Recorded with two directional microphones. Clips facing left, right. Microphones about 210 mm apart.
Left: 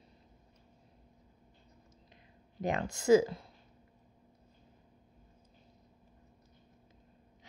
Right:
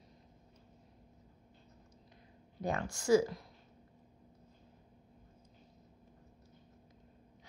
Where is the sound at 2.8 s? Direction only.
25° left (ahead or behind).